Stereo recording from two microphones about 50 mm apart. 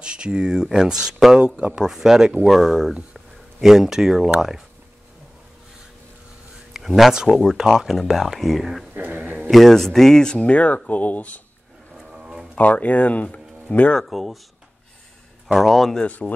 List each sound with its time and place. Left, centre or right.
0.0 s speech: centre
6.7 s a sound: centre
7.2 s speech: centre
8.9 s a sound: right
9.5 s speech: centre; by 11.4 s left
12.1 s a sound: centre
12.5 s speech: left
13.9 s speech: centre
15.4 s speech: centre
16.0 s speech: left